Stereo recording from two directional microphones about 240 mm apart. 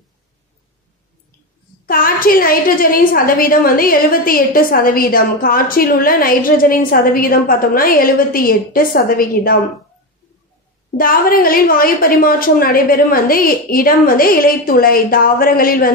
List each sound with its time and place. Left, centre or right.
1.9 s a woman's voice: left
11.0 s a woman's voice: left